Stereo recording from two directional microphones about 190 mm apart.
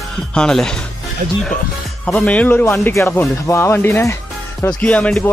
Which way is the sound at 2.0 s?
5° left (ahead or behind).